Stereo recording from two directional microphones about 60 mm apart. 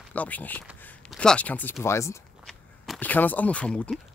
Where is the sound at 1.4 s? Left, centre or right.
Left.